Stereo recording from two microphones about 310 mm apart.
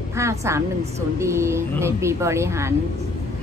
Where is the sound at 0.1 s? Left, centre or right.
Centre.